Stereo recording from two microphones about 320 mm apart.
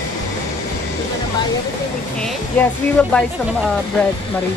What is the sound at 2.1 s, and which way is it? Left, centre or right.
Speech, centre.